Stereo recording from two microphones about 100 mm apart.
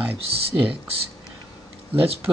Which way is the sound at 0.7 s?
75° right (ahead or behind).